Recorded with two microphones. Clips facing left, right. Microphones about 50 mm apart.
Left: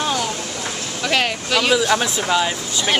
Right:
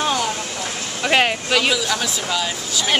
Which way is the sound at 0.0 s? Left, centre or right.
Centre.